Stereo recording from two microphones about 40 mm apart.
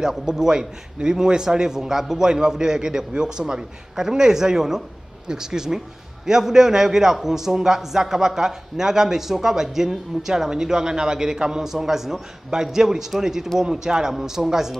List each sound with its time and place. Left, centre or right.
0.2 s speech: centre